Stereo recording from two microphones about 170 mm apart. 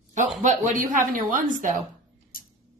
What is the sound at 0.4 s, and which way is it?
Speech, 45° right (ahead or behind).